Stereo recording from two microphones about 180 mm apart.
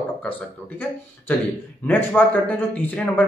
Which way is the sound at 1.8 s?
10° left (ahead or behind).